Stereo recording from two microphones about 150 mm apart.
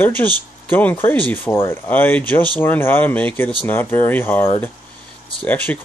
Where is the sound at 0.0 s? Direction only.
10° left (ahead or behind).